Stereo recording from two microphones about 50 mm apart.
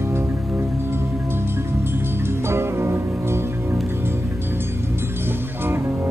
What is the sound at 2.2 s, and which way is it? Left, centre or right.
Music, right.